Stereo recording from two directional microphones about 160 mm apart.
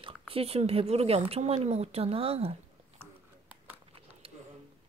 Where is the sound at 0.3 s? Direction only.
40° right (ahead or behind).